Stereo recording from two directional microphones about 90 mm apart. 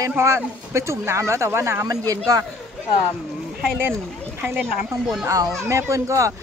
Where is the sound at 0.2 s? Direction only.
30° right (ahead or behind).